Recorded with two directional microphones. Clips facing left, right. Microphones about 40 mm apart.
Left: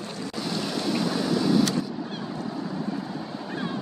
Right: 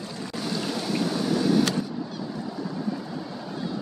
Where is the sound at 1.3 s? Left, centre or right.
Right.